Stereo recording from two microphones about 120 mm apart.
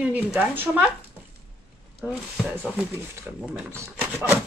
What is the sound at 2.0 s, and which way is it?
Speech, 5° right (ahead or behind).